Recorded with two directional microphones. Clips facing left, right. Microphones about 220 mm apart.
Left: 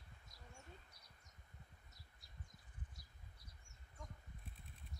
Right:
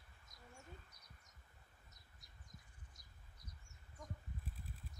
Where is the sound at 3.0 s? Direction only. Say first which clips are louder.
Left 1 dB; 20° right (ahead or behind).